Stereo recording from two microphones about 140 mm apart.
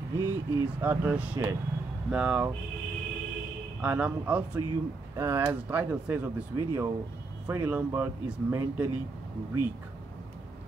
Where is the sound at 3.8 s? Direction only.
10° right (ahead or behind).